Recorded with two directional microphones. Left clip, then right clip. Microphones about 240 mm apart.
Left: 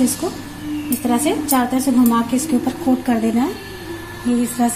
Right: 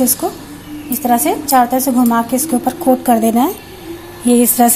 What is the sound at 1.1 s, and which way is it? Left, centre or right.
Speech, right.